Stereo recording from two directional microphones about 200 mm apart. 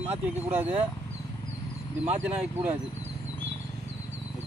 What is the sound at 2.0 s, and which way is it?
Speech, 10° right (ahead or behind).